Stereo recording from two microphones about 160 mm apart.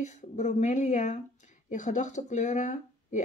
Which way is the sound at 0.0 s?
50° left (ahead or behind).